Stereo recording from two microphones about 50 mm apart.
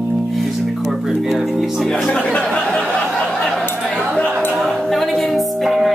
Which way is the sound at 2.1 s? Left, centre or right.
Centre.